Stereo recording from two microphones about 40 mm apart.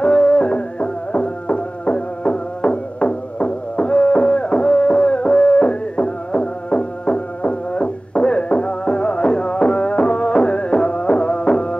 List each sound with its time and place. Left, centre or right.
0.0 s music: left